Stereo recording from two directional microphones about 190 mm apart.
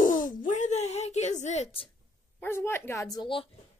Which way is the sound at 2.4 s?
10° left (ahead or behind).